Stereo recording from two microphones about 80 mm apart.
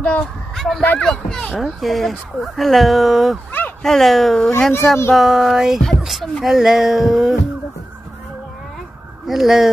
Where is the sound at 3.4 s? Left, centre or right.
Left.